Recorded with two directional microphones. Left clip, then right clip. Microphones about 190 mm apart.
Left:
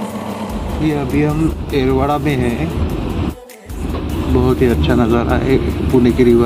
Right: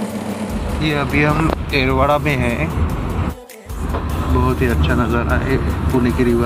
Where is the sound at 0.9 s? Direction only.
15° left (ahead or behind).